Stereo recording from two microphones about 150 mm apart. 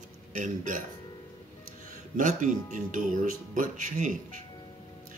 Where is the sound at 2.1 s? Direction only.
60° right (ahead or behind).